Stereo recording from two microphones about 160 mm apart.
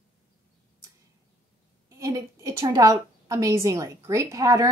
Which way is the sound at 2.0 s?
20° right (ahead or behind).